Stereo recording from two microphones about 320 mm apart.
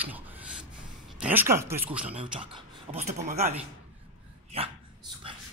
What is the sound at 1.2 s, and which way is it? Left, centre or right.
Speech, centre.